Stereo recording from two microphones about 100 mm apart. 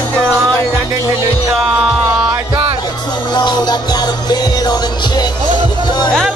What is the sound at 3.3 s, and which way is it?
Music, 45° left (ahead or behind).